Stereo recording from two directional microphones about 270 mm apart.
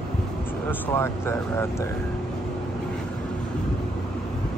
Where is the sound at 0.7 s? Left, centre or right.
Centre.